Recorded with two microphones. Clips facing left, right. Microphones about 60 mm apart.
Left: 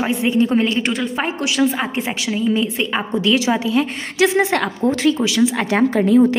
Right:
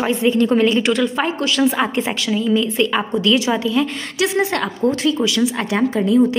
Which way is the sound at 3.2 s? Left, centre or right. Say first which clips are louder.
Left 1 dB; left.